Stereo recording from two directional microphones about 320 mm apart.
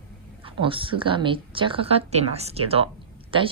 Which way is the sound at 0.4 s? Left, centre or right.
Centre.